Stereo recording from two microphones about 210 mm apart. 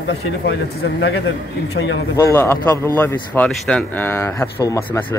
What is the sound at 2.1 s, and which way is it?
A man's voice, 10° left (ahead or behind).